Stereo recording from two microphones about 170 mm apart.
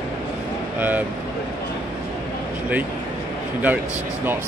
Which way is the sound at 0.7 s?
10° right (ahead or behind).